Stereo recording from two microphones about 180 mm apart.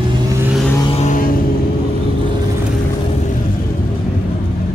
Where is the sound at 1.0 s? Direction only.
45° left (ahead or behind).